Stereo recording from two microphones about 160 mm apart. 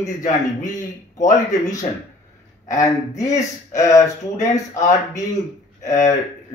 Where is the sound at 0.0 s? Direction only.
50° left (ahead or behind).